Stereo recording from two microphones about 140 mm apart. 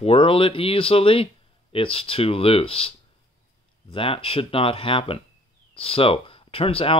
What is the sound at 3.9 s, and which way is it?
Speech, 40° left (ahead or behind).